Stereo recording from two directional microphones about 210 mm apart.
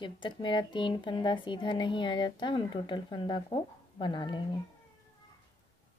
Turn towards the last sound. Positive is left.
turn(degrees=20)  # may be behind; listen again after turning